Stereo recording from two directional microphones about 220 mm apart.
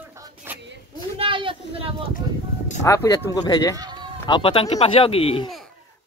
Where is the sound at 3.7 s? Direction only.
20° right (ahead or behind).